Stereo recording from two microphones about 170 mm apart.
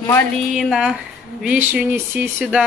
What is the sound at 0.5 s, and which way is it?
Speech, centre (ahead or behind).